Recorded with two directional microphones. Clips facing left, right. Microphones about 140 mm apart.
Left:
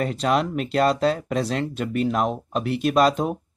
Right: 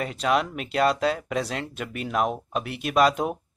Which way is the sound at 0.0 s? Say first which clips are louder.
Left 2 dB; 40° left (ahead or behind).